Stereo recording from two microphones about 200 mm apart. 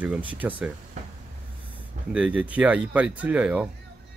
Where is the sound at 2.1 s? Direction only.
5° right (ahead or behind).